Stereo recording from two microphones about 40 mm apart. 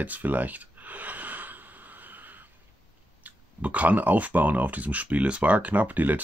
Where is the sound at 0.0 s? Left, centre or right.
Right.